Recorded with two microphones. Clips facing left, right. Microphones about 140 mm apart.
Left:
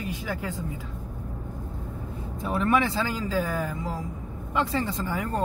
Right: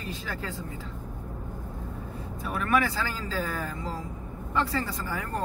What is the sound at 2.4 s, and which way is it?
Speech, 25° left (ahead or behind).